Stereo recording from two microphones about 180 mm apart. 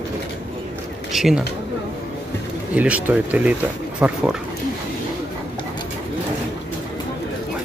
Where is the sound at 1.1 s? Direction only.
Centre (ahead or behind).